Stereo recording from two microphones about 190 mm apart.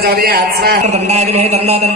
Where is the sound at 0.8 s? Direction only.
35° right (ahead or behind).